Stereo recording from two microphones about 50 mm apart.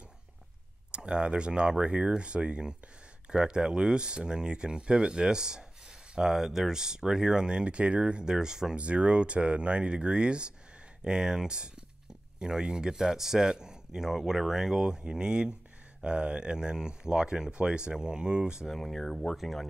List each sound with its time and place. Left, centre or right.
0.9 s speech: right
8.7 s speech: right
18.7 s speech: centre